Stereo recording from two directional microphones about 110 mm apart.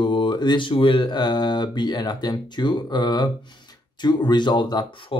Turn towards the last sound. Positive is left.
turn(degrees=40)  # may be behind; listen again after turning